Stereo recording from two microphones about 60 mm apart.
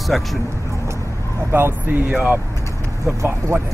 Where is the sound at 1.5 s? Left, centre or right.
Right.